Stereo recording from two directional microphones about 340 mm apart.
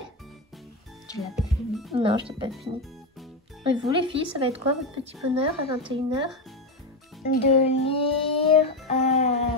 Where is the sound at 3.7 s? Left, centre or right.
Centre.